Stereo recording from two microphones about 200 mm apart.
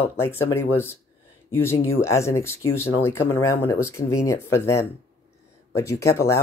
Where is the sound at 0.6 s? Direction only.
10° left (ahead or behind).